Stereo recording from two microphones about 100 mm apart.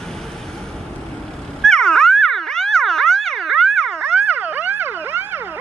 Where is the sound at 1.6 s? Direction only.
5° left (ahead or behind).